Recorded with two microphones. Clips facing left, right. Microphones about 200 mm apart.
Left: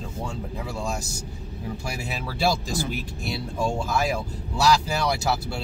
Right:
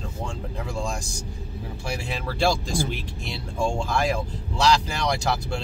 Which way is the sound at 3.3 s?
5° left (ahead or behind).